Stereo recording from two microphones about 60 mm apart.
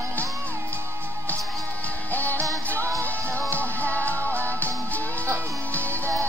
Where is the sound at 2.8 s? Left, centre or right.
Right.